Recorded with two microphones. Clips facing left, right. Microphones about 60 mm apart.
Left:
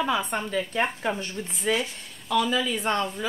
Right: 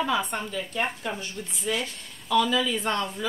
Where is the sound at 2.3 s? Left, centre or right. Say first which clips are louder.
Right 1 dB; centre.